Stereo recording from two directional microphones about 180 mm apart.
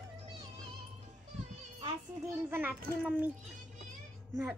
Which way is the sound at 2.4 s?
10° right (ahead or behind).